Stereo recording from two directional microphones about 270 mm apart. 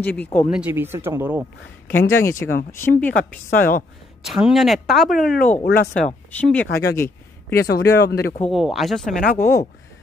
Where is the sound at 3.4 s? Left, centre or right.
Left.